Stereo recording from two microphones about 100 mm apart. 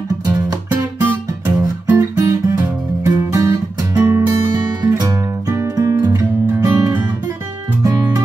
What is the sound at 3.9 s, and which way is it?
Music, 25° right (ahead or behind).